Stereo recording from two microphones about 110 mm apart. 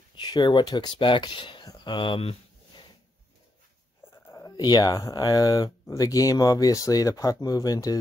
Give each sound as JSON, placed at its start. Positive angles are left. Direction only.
{"t": 0.1, "sound": "speech", "side_deg": 40}
{"t": 4.3, "sound": "speech", "side_deg": 30}